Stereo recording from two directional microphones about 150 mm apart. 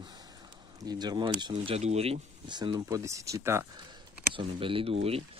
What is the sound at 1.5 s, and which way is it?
Speech, 45° right (ahead or behind).